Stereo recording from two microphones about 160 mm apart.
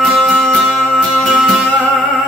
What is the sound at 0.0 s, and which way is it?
Music, 5° left (ahead or behind).